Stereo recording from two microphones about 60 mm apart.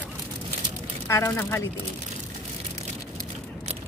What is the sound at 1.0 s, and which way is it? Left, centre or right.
Speech, left.